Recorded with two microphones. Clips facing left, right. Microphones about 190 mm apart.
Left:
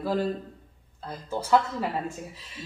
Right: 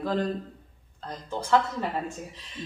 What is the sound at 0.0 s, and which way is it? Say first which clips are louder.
A man's voice: left 1 dB; 5° left (ahead or behind).